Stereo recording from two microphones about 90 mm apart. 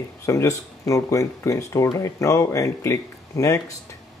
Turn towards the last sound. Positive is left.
turn(degrees=35)  # may be behind; listen again after turning